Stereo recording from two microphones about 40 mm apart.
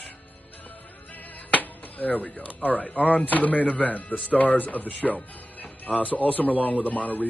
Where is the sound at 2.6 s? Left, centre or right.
Left.